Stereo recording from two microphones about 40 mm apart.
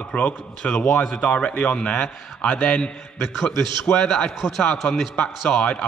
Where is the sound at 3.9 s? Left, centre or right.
Left.